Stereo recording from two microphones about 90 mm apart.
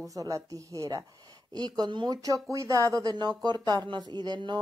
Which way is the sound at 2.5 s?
35° right (ahead or behind).